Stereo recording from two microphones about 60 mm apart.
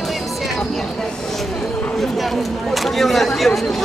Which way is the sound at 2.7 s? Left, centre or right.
Centre.